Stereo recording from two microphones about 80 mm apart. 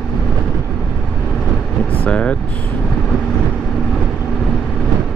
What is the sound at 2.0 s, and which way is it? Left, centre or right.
Speech, centre.